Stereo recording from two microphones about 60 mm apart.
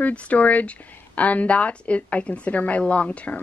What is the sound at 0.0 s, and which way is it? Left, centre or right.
Speech, left.